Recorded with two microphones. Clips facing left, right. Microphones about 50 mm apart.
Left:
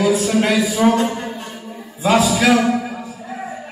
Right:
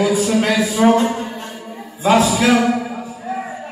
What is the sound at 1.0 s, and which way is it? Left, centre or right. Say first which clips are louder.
Music: right 2 dB; centre.